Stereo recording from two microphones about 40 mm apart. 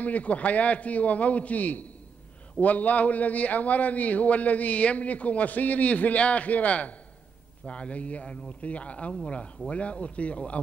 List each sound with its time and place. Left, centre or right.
0.0 s a man's voice: left